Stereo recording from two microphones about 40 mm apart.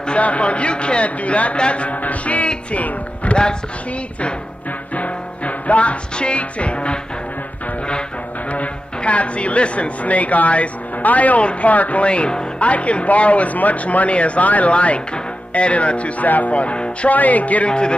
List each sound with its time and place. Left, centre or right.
0.1 s speech: left
2.4 s music: left
4.9 s music: left
8.5 s speech: left
17.1 s speech: left
17.6 s speech: left